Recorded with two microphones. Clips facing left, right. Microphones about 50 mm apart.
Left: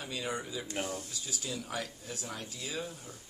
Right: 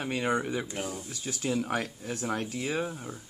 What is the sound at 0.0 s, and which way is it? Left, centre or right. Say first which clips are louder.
Speech: right 8 dB; right.